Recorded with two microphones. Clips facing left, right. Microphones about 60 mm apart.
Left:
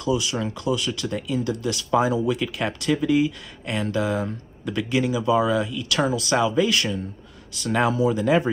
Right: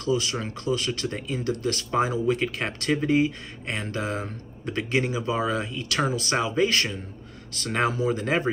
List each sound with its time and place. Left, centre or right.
0.2 s speech: right